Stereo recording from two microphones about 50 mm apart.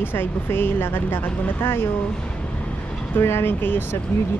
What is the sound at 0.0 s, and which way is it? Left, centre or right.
Speech, left.